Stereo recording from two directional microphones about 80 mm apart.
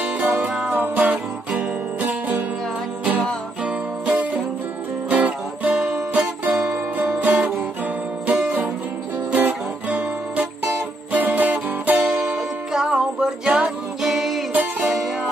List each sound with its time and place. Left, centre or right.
0.7 s music: centre
3.6 s music: centre
8.3 s guitar: centre
9.3 s music: centre
14.5 s music: right